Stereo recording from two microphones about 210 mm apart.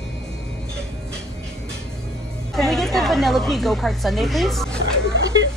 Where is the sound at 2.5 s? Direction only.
Centre (ahead or behind).